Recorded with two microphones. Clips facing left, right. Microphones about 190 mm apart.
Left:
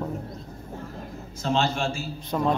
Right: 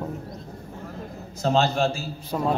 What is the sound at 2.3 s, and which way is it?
Speech, 10° right (ahead or behind).